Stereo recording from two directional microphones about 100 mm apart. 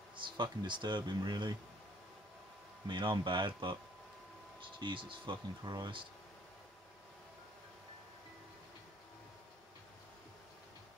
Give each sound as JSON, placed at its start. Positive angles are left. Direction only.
{"t": 0.1, "sound": "a sound", "side_deg": -55}
{"t": 0.6, "sound": "speech", "side_deg": -50}
{"t": 2.9, "sound": "speech", "side_deg": -50}